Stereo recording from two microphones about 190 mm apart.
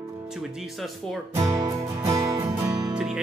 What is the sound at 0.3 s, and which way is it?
Speech, centre (ahead or behind).